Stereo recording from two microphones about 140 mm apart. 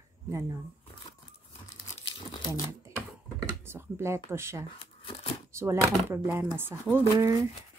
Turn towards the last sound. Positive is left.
turn(degrees=-20)  # may be behind; listen again after turning